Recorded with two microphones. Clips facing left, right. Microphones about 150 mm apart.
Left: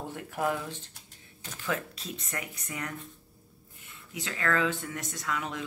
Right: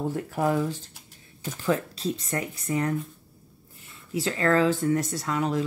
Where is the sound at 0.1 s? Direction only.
35° right (ahead or behind).